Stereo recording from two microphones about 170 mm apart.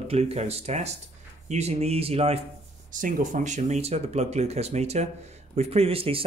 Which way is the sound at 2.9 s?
50° right (ahead or behind).